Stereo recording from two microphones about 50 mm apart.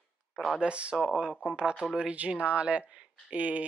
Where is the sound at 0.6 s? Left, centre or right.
Right.